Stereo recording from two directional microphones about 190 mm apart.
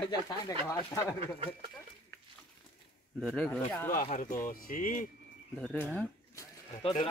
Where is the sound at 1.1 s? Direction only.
30° right (ahead or behind).